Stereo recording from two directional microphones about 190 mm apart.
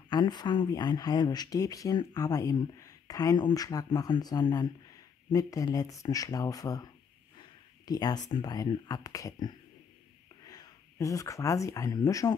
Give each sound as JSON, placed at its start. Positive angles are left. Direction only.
{"t": 0.1, "sound": "speech", "side_deg": 20}
{"t": 7.3, "sound": "a sound", "side_deg": 20}
{"t": 8.3, "sound": "speech", "side_deg": 20}